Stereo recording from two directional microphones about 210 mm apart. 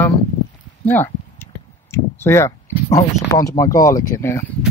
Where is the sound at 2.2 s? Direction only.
15° left (ahead or behind).